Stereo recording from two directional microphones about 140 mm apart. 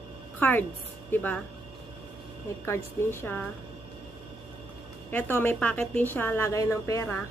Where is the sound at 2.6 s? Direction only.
15° left (ahead or behind).